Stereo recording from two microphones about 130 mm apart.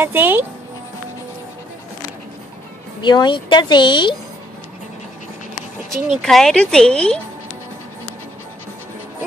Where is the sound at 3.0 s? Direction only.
35° left (ahead or behind).